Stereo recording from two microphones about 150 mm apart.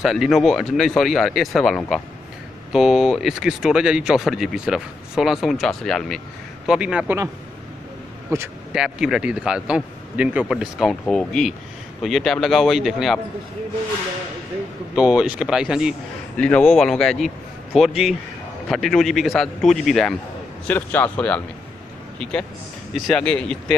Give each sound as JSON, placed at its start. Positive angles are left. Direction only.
{"t": 0.0, "sound": "speech", "side_deg": 0}
{"t": 8.3, "sound": "speech", "side_deg": -20}
{"t": 8.7, "sound": "speech", "side_deg": -5}
{"t": 15.0, "sound": "speech", "side_deg": -5}
{"t": 16.3, "sound": "speech", "side_deg": 10}
{"t": 20.6, "sound": "a man's voice", "side_deg": 10}